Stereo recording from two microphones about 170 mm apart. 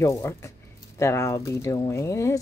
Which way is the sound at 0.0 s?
15° left (ahead or behind).